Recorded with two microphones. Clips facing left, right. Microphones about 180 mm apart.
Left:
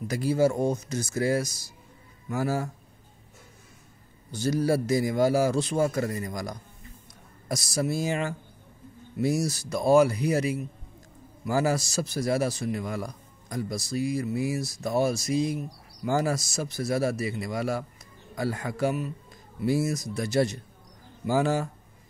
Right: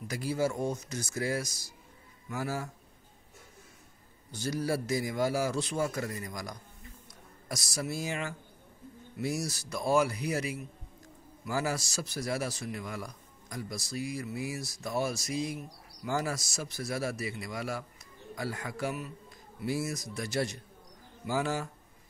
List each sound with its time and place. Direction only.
0.1 s a man's voice: 30° left (ahead or behind)
4.4 s a man's voice: 30° left (ahead or behind)
13.7 s a man's voice: 30° left (ahead or behind)